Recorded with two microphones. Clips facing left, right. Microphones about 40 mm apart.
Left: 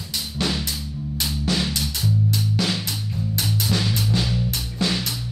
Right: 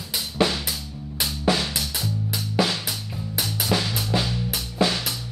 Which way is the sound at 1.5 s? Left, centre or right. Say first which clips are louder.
Right 3 dB; centre.